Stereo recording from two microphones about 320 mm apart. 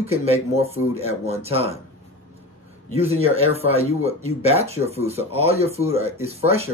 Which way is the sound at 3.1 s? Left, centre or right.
Centre.